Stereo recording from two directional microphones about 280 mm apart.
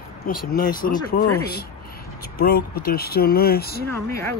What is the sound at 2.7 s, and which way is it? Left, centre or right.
Speech, left.